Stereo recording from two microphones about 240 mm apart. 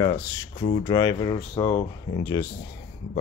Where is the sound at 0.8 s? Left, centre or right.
Centre.